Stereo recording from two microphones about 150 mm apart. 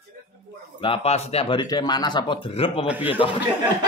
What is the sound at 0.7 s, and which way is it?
Speech, 35° left (ahead or behind).